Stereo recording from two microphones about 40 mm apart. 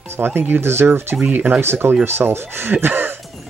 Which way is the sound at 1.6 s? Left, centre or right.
Right.